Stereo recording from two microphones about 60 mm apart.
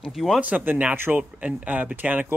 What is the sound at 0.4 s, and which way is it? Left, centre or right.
Speech, right.